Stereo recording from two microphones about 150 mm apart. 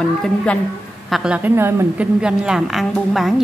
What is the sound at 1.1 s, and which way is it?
Speech, 5° right (ahead or behind).